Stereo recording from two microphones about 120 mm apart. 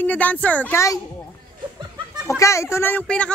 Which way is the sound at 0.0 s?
15° left (ahead or behind).